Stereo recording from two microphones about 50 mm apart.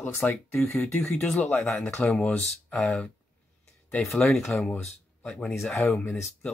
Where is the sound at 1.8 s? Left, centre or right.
Centre.